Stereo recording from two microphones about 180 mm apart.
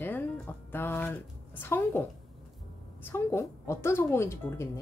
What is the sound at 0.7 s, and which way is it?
Speech, 10° left (ahead or behind).